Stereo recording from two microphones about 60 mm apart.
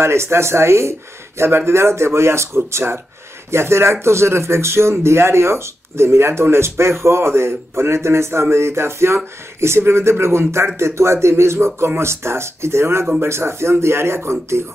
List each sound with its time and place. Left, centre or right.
0.0 s speech: right